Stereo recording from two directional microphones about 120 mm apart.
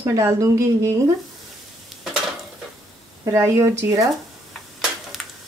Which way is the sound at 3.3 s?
25° right (ahead or behind).